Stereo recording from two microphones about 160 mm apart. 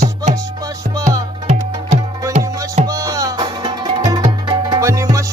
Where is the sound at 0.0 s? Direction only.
50° right (ahead or behind).